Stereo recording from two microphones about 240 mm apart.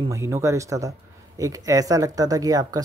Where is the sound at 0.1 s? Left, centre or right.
Centre.